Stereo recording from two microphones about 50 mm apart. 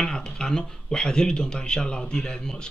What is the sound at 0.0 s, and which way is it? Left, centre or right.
Speech, centre.